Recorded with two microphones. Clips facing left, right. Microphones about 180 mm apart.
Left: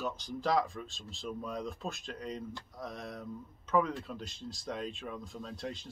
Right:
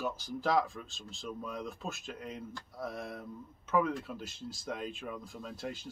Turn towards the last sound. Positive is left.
turn(degrees=-5)  # may be behind; listen again after turning